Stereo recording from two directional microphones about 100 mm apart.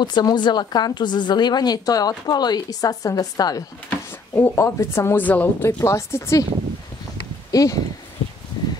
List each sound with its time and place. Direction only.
0.0 s a woman's voice: 45° left (ahead or behind)
3.9 s speech: 20° left (ahead or behind)
5.8 s speech: 30° left (ahead or behind)
7.5 s speech: 35° left (ahead or behind)